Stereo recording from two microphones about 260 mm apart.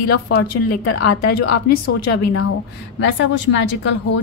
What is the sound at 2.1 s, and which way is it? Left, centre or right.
Speech, left.